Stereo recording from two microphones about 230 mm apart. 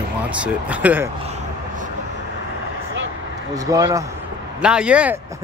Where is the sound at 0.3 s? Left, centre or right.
Centre.